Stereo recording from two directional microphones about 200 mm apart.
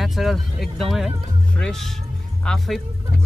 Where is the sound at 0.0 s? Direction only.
Centre (ahead or behind).